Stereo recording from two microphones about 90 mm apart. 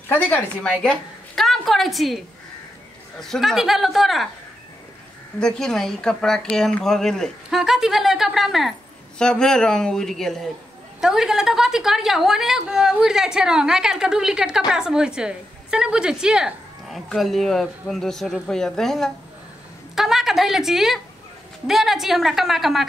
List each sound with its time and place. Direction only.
0.1 s a woman's voice: 20° left (ahead or behind)
0.7 s a woman's voice: 5° left (ahead or behind)
5.4 s a man's voice: 5° left (ahead or behind)
9.2 s a man's voice: 10° left (ahead or behind)